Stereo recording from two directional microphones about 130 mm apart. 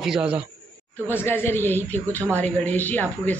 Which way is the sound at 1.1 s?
15° left (ahead or behind).